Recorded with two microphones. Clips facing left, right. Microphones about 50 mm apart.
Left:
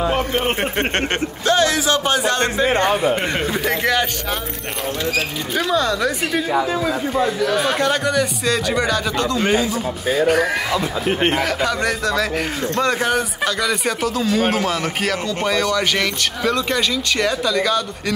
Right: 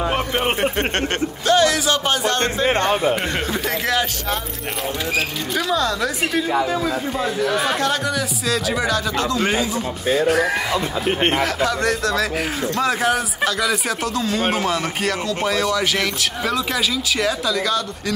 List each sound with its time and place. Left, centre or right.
0.6 s speech: left
3.3 s speech: centre
5.7 s speech: centre
7.2 s speech: centre